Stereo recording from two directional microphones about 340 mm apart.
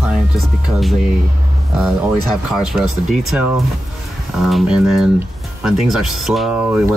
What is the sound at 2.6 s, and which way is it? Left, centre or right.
Speech, centre.